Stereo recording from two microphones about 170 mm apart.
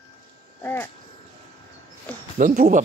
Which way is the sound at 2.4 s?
50° right (ahead or behind).